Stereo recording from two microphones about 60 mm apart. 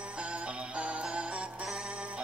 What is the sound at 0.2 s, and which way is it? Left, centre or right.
Music, centre.